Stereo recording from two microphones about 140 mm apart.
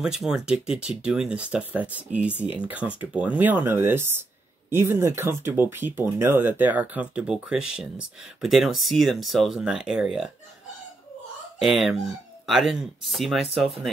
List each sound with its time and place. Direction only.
0.0 s speech: 5° right (ahead or behind)
11.6 s speech: 5° right (ahead or behind)